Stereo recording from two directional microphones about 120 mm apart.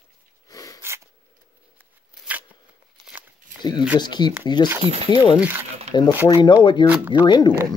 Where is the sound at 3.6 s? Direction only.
40° left (ahead or behind).